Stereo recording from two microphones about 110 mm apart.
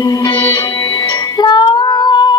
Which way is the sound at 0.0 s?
35° left (ahead or behind).